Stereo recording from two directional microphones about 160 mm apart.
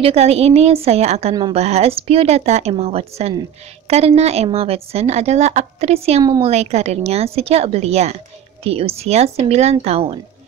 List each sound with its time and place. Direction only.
0.0 s a woman's voice: 40° right (ahead or behind)